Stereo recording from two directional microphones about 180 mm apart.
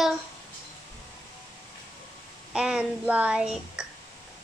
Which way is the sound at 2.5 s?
5° right (ahead or behind).